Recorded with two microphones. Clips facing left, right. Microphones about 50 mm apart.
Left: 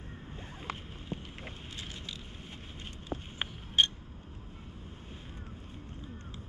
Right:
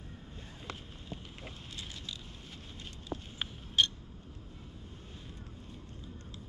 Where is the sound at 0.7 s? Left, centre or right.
Left.